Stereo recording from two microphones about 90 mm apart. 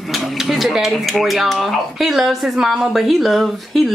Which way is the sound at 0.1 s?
Centre (ahead or behind).